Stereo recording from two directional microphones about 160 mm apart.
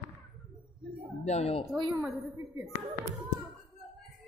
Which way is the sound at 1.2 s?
40° left (ahead or behind).